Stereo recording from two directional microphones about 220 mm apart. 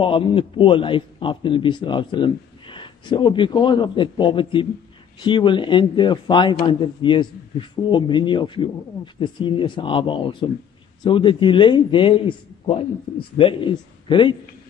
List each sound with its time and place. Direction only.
0.0 s speech: 25° left (ahead or behind)